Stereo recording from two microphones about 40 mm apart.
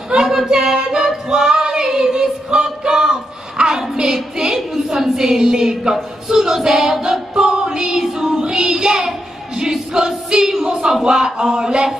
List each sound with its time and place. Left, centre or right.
0.1 s female singing: centre
3.5 s child singing: centre
4.8 s a woman's voice: centre
6.2 s child singing: centre
9.6 s a sound: centre
11.1 s speech: centre